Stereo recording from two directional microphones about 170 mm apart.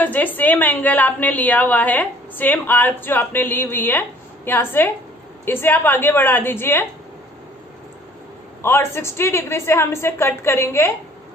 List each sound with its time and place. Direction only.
0.0 s a woman's voice: 10° left (ahead or behind)
8.6 s a woman's voice: 15° left (ahead or behind)